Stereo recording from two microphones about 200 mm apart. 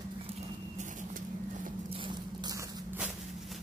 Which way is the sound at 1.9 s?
25° right (ahead or behind).